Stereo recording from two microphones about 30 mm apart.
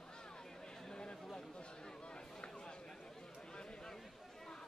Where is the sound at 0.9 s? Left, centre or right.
Left.